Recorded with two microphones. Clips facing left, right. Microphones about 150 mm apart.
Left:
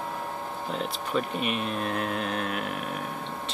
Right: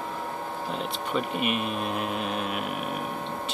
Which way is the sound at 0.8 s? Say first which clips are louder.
Left 1 dB; 5° right (ahead or behind).